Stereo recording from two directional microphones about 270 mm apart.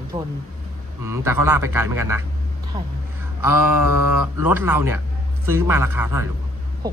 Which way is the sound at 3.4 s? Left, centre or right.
Centre.